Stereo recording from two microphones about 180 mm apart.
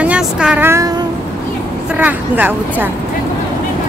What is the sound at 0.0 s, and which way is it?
Speech, 5° right (ahead or behind).